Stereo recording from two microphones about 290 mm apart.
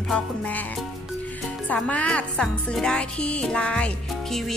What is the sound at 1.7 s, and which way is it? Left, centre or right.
Speech, centre.